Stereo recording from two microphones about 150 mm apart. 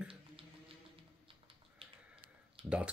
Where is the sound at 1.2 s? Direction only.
35° right (ahead or behind).